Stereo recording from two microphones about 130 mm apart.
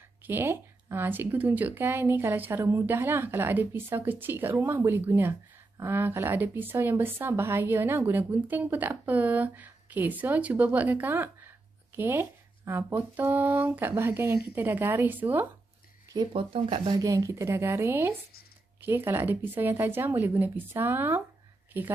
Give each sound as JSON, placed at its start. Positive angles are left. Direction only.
{"t": 0.3, "sound": "speech", "side_deg": -15}
{"t": 16.3, "sound": "speech", "side_deg": -40}